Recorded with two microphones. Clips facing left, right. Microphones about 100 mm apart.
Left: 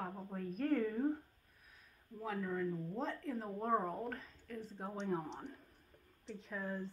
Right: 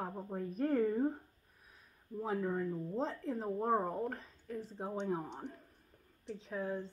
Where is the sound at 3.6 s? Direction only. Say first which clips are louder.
Right 2 dB; 20° right (ahead or behind).